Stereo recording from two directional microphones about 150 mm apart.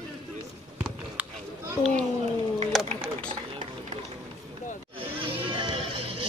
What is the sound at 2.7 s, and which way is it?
Sewing machine, centre (ahead or behind).